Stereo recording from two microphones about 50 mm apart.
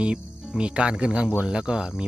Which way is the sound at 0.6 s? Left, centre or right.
Right.